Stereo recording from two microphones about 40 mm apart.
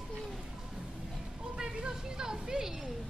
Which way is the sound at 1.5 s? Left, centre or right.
Centre.